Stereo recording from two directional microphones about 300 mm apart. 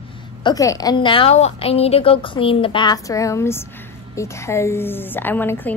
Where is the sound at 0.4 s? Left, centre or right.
Centre.